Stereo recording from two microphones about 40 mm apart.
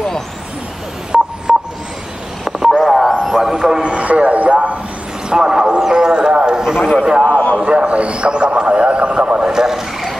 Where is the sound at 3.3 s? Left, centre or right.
Centre.